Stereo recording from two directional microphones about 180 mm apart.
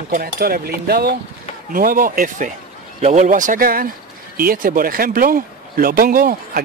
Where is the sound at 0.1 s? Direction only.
55° right (ahead or behind).